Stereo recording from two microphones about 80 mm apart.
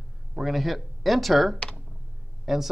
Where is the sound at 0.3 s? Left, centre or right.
Centre.